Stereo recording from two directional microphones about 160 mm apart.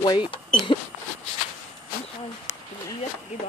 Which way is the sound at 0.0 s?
30° left (ahead or behind).